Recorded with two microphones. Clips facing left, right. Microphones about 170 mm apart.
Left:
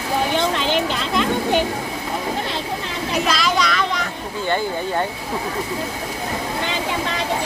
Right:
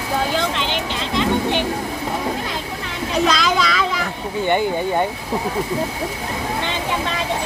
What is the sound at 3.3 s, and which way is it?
Speech, centre (ahead or behind).